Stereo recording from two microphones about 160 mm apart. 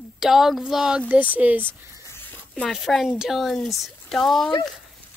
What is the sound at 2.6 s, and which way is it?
Speech, centre (ahead or behind).